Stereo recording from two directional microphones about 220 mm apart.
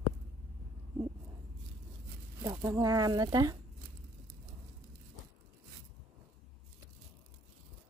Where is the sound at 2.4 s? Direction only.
15° right (ahead or behind).